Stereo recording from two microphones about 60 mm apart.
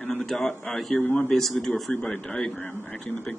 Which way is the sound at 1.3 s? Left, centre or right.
Centre.